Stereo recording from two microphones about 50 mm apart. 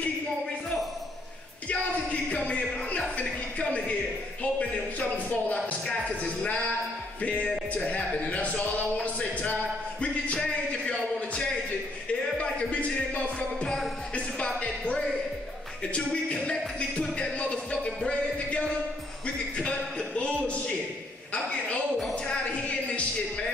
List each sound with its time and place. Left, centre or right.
2.2 s music: left
4.4 s speech: left
7.2 s music: left
7.7 s a man's voice: left
9.0 s a sound: left
12.1 s music: left
17.1 s music: left
19.2 s a sound: centre
22.1 s music: centre